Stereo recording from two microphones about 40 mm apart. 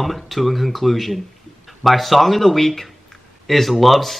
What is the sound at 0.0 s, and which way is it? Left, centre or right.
Speech, centre.